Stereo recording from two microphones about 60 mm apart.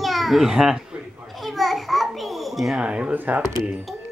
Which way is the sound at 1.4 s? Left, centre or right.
Centre.